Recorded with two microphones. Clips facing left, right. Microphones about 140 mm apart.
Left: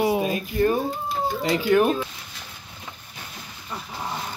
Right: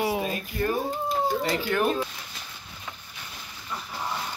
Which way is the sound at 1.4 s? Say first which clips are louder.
Left 6 dB; 15° left (ahead or behind).